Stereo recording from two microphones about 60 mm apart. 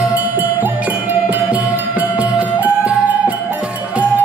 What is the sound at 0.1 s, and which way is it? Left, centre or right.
Cowbell, right.